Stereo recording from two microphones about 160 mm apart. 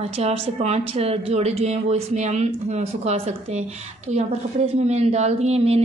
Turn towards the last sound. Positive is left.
turn(degrees=-40)  # may be behind; listen again after turning